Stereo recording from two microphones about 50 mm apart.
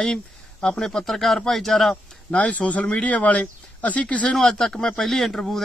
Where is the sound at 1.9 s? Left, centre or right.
Left.